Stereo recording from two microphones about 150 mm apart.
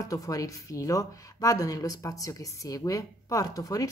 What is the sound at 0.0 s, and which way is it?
Speech, 25° left (ahead or behind).